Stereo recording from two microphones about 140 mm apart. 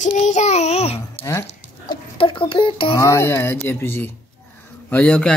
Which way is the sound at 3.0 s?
20° left (ahead or behind).